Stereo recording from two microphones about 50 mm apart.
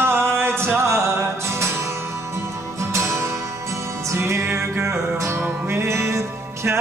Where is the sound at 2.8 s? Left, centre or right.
Right.